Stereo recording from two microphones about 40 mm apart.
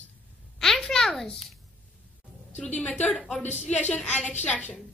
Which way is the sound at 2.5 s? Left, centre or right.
Left.